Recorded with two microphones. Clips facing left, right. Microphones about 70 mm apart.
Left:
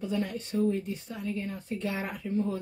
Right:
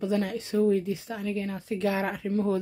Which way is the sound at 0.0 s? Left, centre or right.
Right.